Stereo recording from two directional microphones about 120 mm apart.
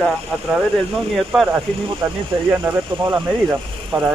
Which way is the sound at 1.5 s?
20° right (ahead or behind).